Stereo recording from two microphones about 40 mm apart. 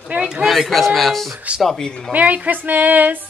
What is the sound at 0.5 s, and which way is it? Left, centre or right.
Speech, centre.